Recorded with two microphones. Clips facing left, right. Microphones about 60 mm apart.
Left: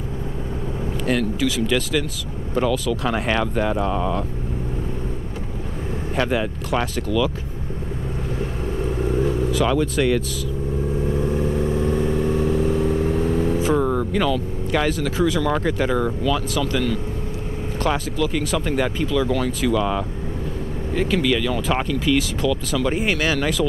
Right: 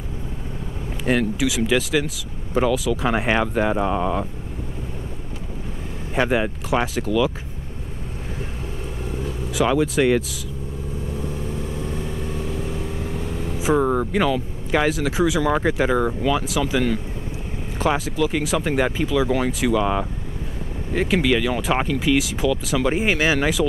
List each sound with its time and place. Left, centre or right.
1.0 s speech: centre
6.1 s speech: centre
8.8 s vehicle: left
9.5 s speech: centre
11.1 s vehicle: left
13.6 s speech: centre